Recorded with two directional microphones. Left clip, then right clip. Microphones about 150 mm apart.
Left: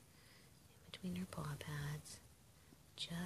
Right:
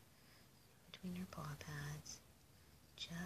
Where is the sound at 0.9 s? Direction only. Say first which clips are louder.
Left 3 dB; 35° left (ahead or behind).